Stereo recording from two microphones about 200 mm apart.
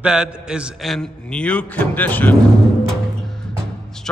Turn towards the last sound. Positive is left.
turn(degrees=5)  # may be behind; listen again after turning